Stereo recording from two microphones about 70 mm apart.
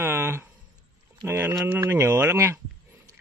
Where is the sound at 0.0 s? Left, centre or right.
Right.